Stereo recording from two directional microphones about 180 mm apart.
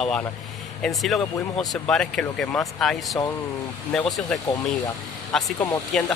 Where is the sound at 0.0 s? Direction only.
5° left (ahead or behind).